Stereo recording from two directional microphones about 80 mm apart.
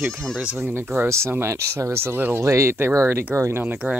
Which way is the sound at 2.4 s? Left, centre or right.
Right.